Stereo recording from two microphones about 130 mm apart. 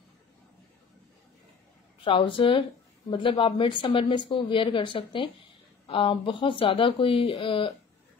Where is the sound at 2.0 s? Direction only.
40° left (ahead or behind).